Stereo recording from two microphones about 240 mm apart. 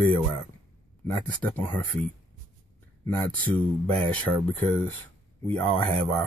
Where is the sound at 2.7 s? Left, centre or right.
Centre.